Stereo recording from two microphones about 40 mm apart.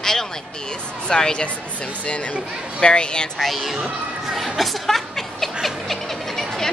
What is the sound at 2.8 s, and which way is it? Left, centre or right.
Speech, left.